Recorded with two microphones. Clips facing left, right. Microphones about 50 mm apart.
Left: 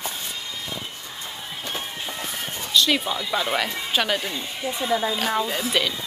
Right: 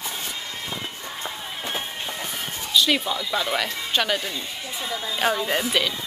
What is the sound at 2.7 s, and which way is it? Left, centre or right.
Speech, centre.